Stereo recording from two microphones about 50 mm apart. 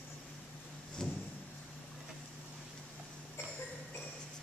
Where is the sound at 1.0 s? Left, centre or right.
Centre.